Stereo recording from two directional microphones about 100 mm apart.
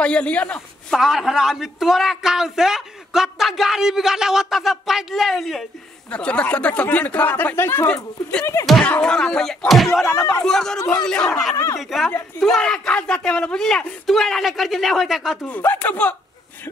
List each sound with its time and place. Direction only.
0.0 s a man's voice: 10° left (ahead or behind)
0.9 s a man's voice: 5° right (ahead or behind)
6.0 s speech: 10° left (ahead or behind)
7.9 s a man's voice: 10° left (ahead or behind)
10.0 s speech: 30° left (ahead or behind)
10.4 s a man's voice: 5° left (ahead or behind)
11.5 s speech: 30° left (ahead or behind)
11.8 s a man's voice: centre (ahead or behind)
15.4 s speech: 15° left (ahead or behind)